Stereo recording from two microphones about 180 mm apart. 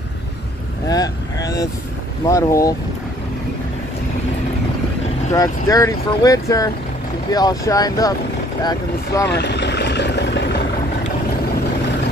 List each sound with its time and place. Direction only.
0.8 s cattle: 20° left (ahead or behind)
2.2 s speech: 15° left (ahead or behind)
5.3 s speech: 20° left (ahead or behind)
9.3 s vehicle: 70° left (ahead or behind)